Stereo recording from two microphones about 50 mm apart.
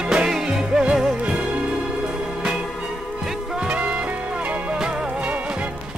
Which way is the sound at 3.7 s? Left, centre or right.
Right.